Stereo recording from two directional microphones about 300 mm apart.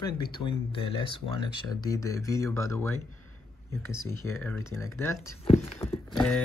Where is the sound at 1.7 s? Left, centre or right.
Centre.